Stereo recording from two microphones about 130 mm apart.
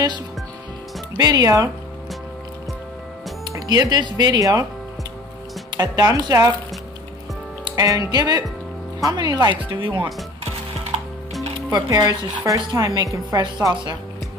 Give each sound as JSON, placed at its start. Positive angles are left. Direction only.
{"t": 1.1, "sound": "speech", "side_deg": -30}
{"t": 3.5, "sound": "speech", "side_deg": -30}
{"t": 5.7, "sound": "speech", "side_deg": -30}
{"t": 7.6, "sound": "speech", "side_deg": -25}
{"t": 11.7, "sound": "speech", "side_deg": -30}